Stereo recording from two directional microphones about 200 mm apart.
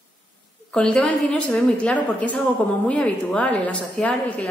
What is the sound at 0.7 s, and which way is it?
A woman's voice, 5° left (ahead or behind).